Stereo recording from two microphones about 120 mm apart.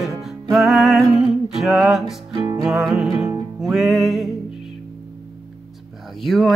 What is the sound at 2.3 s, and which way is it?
Music, 30° right (ahead or behind).